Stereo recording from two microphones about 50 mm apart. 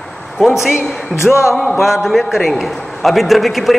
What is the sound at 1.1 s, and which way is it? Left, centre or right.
Music, left.